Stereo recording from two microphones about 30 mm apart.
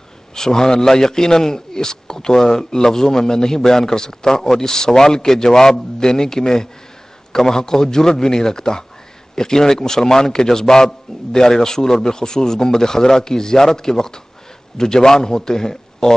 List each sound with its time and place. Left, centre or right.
0.3 s a man's voice: centre